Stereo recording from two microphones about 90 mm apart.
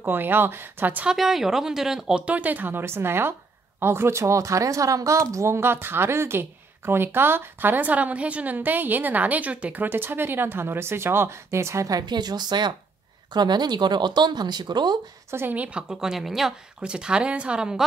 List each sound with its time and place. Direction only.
0.0 s a woman's voice: 25° right (ahead or behind)
1.0 s a woman's voice: 5° right (ahead or behind); by 12.0 s 35° right (ahead or behind)
12.1 s speech: 50° right (ahead or behind)
15.3 s a woman's voice: 20° right (ahead or behind)